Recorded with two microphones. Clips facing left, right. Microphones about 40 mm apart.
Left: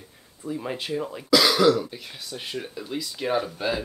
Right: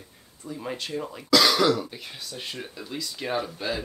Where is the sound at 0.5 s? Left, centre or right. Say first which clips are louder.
Left 3 dB; centre.